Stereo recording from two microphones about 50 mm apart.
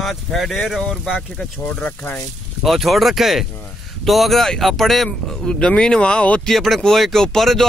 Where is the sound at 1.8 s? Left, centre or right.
Left.